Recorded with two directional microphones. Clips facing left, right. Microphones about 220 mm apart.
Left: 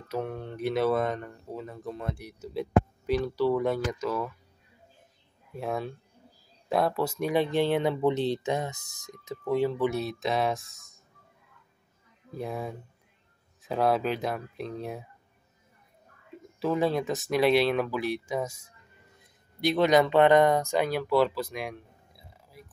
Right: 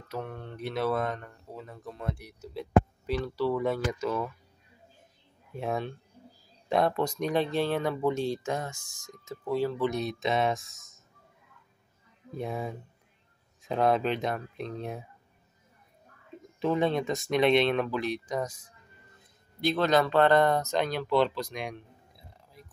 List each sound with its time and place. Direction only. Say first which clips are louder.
0.1 s speech: left 4 dB; 5° left (ahead or behind)
3.1 s speech: left 3 dB; centre (ahead or behind)
5.5 s speech: even; centre (ahead or behind)
12.4 s speech: even; centre (ahead or behind)
16.5 s speech: even; 5° left (ahead or behind)